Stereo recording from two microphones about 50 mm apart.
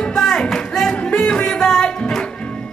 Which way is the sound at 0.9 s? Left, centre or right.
Left.